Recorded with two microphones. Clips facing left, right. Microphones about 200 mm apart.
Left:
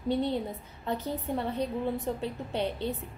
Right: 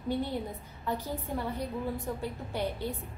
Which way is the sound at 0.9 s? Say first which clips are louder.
Left 3 dB; 20° left (ahead or behind).